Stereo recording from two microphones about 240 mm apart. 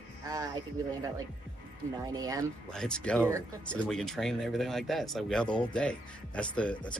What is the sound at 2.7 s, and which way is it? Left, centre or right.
Speech, centre.